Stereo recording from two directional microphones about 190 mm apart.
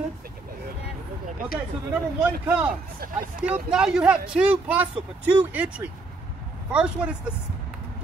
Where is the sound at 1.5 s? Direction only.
5° right (ahead or behind).